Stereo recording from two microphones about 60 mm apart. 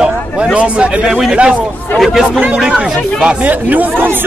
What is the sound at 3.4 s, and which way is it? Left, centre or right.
Speech, right.